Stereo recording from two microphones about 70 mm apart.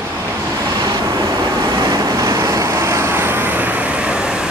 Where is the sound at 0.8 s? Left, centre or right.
Right.